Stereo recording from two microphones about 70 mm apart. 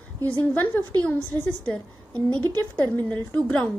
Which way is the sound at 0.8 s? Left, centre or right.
Right.